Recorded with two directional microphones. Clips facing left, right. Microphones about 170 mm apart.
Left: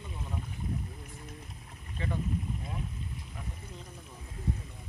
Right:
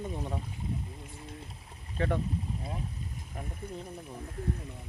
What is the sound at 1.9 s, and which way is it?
Speech, 55° right (ahead or behind).